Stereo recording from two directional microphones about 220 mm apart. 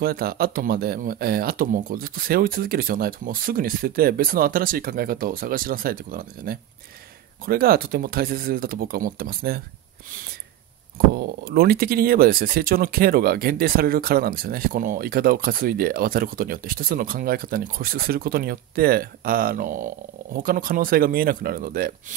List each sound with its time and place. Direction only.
0.0 s speech: 45° right (ahead or behind)
11.1 s speech: 45° right (ahead or behind)